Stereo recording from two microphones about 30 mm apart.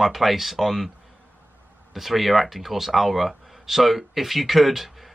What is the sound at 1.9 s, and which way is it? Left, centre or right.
Speech, centre.